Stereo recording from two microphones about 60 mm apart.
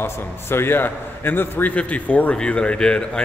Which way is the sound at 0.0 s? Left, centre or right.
Left.